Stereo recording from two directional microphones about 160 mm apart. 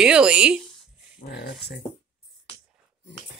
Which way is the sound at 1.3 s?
90° left.